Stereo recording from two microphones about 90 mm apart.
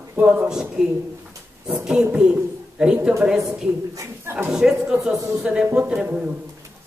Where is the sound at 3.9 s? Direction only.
30° right (ahead or behind).